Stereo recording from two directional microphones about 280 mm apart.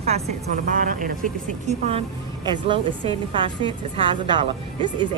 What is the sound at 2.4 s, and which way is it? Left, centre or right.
A woman's voice, centre.